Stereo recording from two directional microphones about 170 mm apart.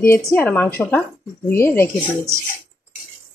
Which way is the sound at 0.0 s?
10° left (ahead or behind).